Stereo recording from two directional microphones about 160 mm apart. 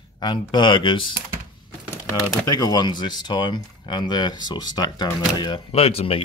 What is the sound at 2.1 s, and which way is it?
Speech, 25° left (ahead or behind).